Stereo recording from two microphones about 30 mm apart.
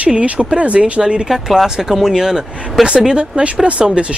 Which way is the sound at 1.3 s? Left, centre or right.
Centre.